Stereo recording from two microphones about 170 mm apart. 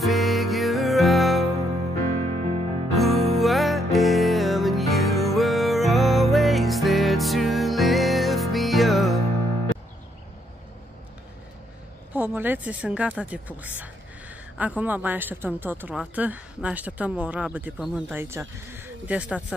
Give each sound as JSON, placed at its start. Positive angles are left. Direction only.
{"t": 0.0, "sound": "music", "side_deg": 0}
{"t": 2.3, "sound": "music", "side_deg": -40}
{"t": 3.0, "sound": "music", "side_deg": 0}
{"t": 12.1, "sound": "speech", "side_deg": -10}